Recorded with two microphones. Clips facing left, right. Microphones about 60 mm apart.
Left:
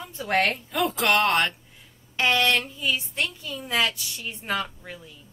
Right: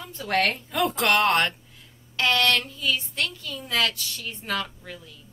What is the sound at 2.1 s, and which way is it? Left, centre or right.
A woman's voice, centre.